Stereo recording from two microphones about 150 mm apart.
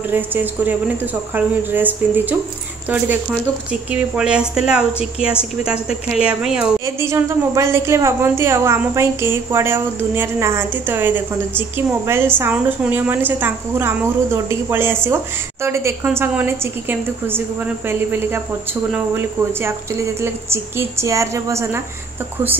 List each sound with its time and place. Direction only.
0.1 s a woman's voice: 15° right (ahead or behind)
7.0 s a woman's voice: 20° right (ahead or behind)